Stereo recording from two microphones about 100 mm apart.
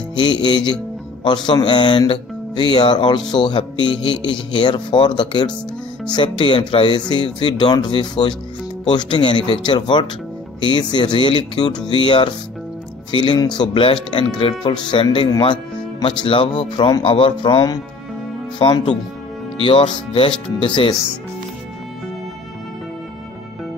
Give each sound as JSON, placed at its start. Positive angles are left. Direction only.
{"t": 0.1, "sound": "speech", "side_deg": 50}
{"t": 19.6, "sound": "speech", "side_deg": 55}